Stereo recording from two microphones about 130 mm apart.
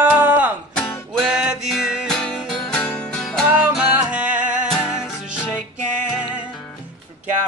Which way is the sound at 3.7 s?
10° right (ahead or behind).